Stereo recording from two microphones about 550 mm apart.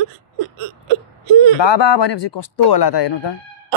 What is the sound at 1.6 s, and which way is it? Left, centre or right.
Speech, left.